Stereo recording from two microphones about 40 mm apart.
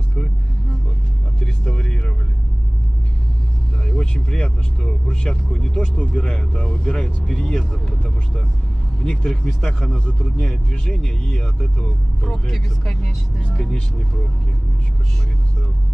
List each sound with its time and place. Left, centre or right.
1.4 s vehicle: centre
3.8 s speech: centre
12.3 s speech: centre
12.9 s speech: left